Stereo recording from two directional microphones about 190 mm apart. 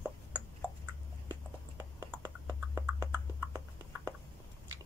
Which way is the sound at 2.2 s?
15° right (ahead or behind).